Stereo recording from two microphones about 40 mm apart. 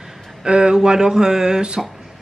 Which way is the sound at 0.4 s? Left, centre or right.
Right.